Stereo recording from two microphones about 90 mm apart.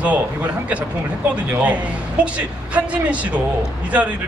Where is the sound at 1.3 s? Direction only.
15° right (ahead or behind).